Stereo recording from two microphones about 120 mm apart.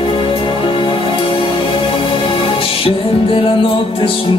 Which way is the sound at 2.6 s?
50° left (ahead or behind).